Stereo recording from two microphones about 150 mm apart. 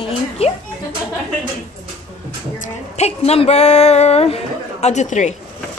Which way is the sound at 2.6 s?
45° left (ahead or behind).